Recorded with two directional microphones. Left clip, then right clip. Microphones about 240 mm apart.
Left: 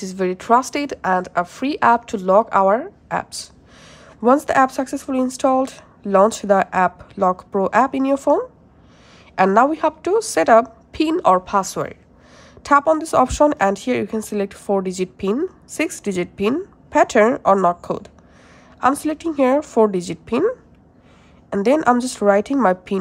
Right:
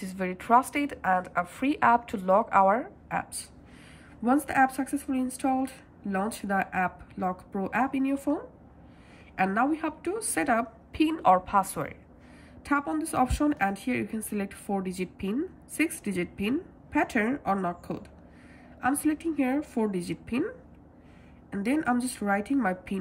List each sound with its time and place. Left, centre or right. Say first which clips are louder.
0.0 s a woman's voice: left 11 dB; centre